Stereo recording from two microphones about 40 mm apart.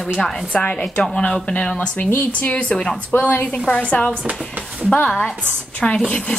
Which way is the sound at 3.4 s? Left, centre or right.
Left.